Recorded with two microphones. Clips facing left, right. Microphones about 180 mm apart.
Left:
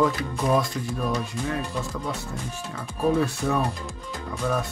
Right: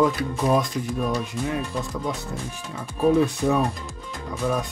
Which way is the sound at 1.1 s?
15° right (ahead or behind).